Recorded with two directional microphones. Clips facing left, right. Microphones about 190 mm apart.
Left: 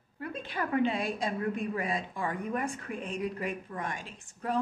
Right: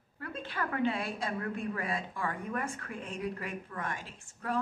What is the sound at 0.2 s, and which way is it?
A woman's voice, 15° left (ahead or behind).